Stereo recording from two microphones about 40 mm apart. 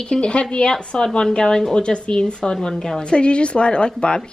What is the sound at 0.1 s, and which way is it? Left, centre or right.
Speech, left.